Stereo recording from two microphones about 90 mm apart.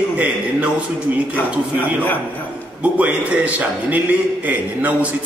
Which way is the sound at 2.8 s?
15° right (ahead or behind).